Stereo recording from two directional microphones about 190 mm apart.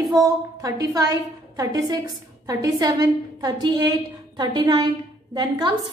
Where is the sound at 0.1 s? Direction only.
20° right (ahead or behind).